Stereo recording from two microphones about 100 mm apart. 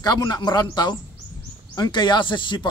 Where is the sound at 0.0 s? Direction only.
40° left (ahead or behind).